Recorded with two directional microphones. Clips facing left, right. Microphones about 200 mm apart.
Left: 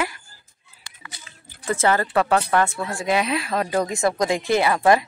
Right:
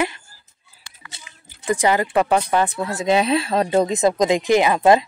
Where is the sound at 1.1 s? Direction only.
20° right (ahead or behind).